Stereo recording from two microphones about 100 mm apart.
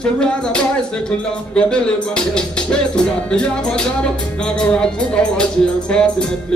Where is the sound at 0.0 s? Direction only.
10° left (ahead or behind).